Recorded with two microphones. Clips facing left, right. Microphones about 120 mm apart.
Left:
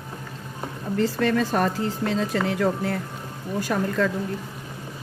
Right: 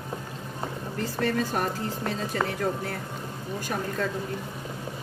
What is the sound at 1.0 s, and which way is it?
Speech, 90° left.